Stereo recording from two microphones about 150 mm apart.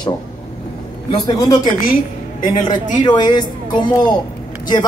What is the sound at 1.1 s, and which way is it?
A woman's voice, 25° left (ahead or behind).